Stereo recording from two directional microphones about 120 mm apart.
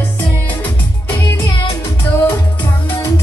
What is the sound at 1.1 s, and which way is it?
Music, 20° left (ahead or behind).